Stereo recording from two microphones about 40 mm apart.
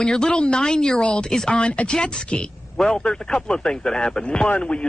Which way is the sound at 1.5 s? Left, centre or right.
Left.